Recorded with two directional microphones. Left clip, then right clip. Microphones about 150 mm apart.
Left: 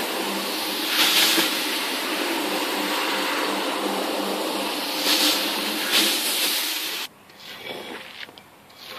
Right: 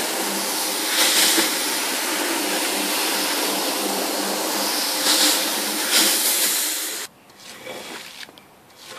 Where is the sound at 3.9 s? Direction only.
15° right (ahead or behind).